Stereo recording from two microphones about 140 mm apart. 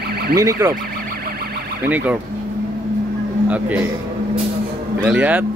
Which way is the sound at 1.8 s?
15° right (ahead or behind).